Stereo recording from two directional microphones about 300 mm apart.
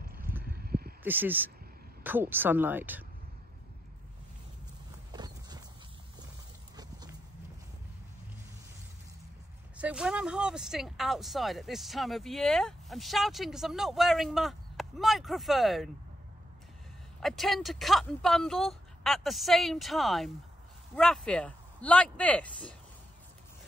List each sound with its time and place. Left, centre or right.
0.0 s a sound: right
1.0 s speech: centre
5.1 s clip-clop: centre
6.8 s horse: centre
9.8 s speech: centre
17.2 s speech: centre